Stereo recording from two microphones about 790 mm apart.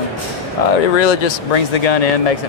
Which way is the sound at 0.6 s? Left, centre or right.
Left.